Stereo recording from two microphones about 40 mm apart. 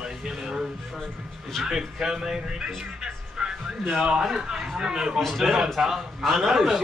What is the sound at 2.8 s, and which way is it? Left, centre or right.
Music, centre.